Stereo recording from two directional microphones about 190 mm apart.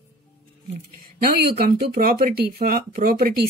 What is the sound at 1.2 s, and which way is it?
Speech, 50° right (ahead or behind).